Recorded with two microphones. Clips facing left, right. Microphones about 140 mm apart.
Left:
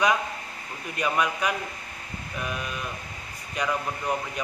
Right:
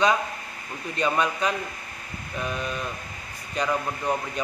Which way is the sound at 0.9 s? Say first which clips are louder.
Right 2 dB; 30° right (ahead or behind).